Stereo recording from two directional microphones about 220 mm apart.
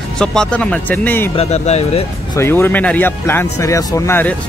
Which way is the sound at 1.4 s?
30° left (ahead or behind).